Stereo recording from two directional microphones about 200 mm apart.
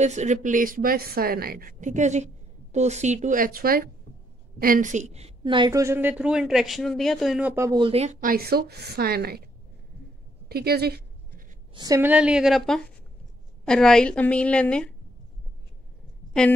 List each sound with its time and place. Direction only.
0.0 s a woman's voice: 35° right (ahead or behind); by 7.8 s 10° right (ahead or behind)
7.8 s a woman's voice: 30° right (ahead or behind); by 9.4 s 50° right (ahead or behind)
10.5 s a sound: 50° right (ahead or behind)
11.7 s a woman's voice: 20° right (ahead or behind); by 15.0 s 5° left (ahead or behind)